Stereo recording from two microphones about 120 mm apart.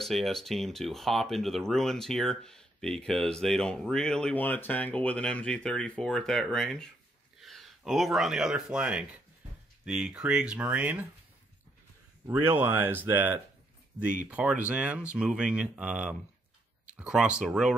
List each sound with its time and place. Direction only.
0.0 s speech: centre (ahead or behind)
12.3 s speech: 15° right (ahead or behind)